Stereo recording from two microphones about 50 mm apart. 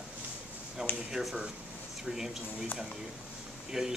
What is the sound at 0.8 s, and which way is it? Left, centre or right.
Speech, centre.